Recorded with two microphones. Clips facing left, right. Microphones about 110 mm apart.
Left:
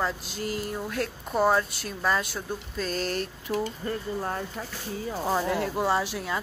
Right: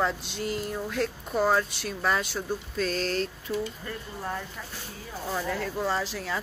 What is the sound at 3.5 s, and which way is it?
Speech, 40° left (ahead or behind).